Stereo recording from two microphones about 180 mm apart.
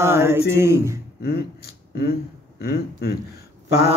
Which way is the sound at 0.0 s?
15° right (ahead or behind).